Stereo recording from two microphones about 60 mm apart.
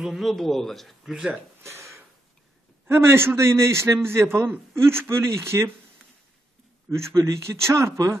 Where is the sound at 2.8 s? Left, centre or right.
Right.